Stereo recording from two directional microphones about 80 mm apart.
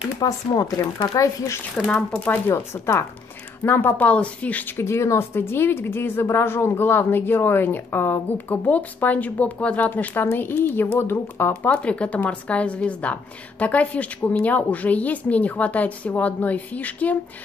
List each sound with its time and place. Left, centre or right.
0.2 s speech: left
2.1 s a woman's voice: centre
2.4 s a woman's voice: left
4.7 s a woman's voice: left
11.7 s a woman's voice: centre